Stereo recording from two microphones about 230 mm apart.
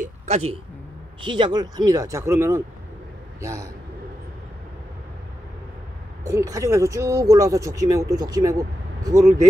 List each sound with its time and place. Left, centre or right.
1.2 s a man's voice: right
6.2 s speech: centre